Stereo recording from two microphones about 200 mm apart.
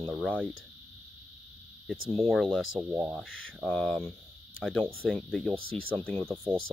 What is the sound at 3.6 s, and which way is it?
Speech, 5° left (ahead or behind).